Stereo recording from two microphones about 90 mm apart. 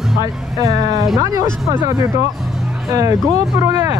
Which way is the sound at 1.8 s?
45° right (ahead or behind).